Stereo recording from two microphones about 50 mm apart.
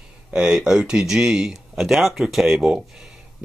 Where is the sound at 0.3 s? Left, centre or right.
Centre.